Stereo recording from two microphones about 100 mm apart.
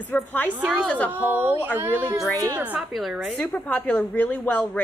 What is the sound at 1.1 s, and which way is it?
Speech, 20° right (ahead or behind).